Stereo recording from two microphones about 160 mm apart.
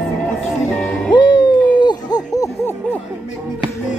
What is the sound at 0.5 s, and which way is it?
Music, 5° left (ahead or behind).